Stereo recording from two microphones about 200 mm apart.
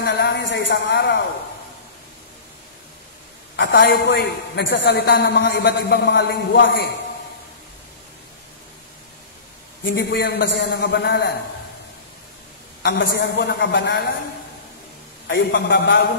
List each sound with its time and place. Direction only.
0.0 s a sound: 60° left (ahead or behind)
3.5 s a woman's voice: 65° left (ahead or behind)
9.8 s a woman's voice: 60° left (ahead or behind)
12.8 s a woman's voice: 55° left (ahead or behind)
15.2 s a woman's voice: 60° left (ahead or behind)